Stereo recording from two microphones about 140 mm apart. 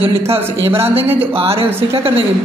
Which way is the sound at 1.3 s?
45° right (ahead or behind).